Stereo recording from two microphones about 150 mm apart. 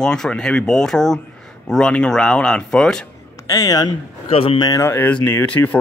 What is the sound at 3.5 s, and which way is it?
Speech, 25° left (ahead or behind).